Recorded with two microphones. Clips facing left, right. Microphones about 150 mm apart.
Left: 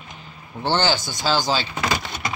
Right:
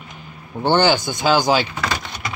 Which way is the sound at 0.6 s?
15° right (ahead or behind).